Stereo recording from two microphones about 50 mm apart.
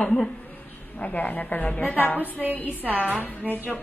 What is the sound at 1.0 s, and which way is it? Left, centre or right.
A woman's voice, left.